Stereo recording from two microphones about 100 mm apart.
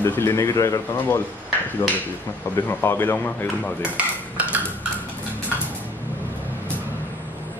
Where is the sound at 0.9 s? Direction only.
20° left (ahead or behind).